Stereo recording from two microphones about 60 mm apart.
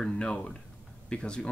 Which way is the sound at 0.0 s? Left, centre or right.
Centre.